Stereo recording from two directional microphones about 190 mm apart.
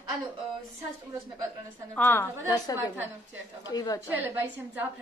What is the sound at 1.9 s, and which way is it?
A woman's voice, 10° left (ahead or behind).